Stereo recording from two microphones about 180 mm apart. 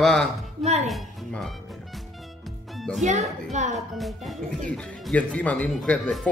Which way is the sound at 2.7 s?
Centre (ahead or behind).